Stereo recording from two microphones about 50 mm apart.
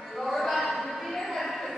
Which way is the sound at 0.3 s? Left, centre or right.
Centre.